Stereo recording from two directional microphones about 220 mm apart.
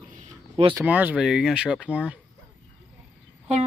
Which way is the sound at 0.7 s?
5° right (ahead or behind).